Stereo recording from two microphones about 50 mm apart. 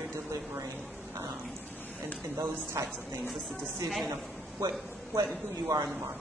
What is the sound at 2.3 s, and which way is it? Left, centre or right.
Speech, right.